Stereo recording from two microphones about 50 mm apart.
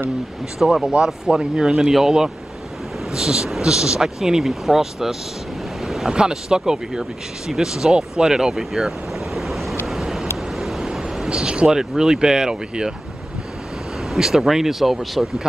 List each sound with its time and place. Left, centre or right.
0.8 s speech: centre
5.9 s waves: centre
6.1 s speech: centre
9.8 s vehicle: centre
10.9 s a sound: centre
11.6 s speech: centre
14.1 s speech: centre